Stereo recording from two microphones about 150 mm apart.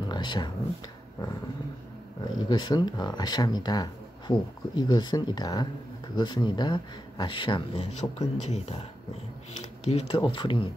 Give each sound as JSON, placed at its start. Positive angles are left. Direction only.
{"t": 0.1, "sound": "speech", "side_deg": 30}
{"t": 2.2, "sound": "speech", "side_deg": 25}
{"t": 7.7, "sound": "speech", "side_deg": 45}